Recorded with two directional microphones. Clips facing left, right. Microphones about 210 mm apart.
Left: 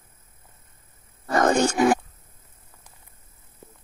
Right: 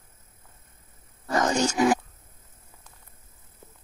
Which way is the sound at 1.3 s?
55° left (ahead or behind).